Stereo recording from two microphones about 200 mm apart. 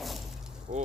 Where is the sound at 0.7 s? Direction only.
40° right (ahead or behind).